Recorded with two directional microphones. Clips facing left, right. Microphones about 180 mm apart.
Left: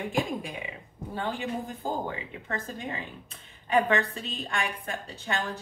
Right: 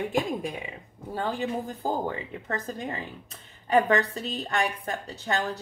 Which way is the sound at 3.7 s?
40° right (ahead or behind).